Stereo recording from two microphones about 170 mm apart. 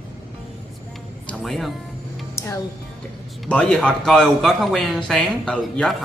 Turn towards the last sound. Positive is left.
turn(degrees=5)  # may be behind; listen again after turning